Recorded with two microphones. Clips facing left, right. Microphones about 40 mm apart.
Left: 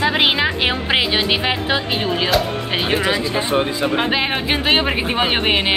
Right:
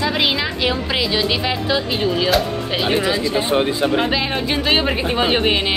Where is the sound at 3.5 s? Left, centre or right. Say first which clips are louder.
Even; centre.